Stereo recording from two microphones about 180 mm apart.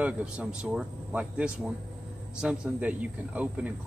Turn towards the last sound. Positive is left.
turn(degrees=-5)  # may be behind; listen again after turning